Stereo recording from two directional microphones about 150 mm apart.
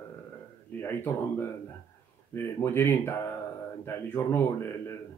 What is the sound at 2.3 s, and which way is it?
Speech, 15° left (ahead or behind).